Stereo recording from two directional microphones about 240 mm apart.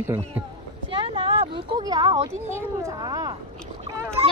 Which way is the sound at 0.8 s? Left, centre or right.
Right.